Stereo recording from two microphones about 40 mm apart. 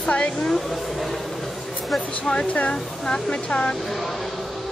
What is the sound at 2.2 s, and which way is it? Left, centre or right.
Speech, left.